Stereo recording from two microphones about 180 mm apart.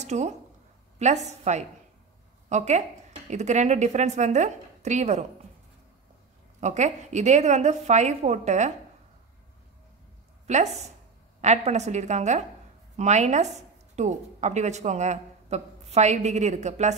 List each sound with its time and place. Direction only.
0.0 s a woman's voice: 40° right (ahead or behind)
6.6 s a woman's voice: 40° right (ahead or behind)
10.4 s a woman's voice: 40° right (ahead or behind)